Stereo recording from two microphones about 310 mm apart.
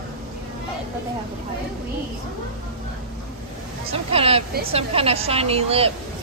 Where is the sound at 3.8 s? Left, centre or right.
Centre.